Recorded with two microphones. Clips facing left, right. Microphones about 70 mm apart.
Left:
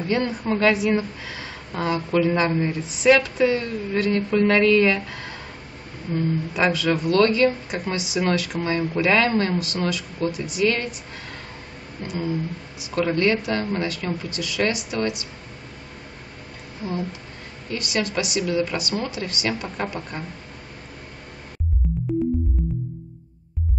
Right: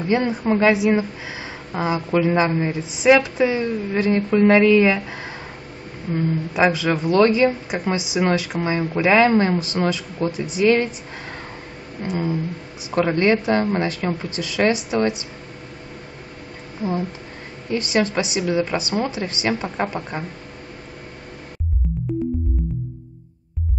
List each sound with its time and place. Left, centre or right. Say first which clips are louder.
0.1 s a woman's voice: right 4 dB; right
12.0 s a woman's voice: right 3 dB; right
17.6 s a woman's voice: right 5 dB; right
21.8 s music: left 1 dB; centre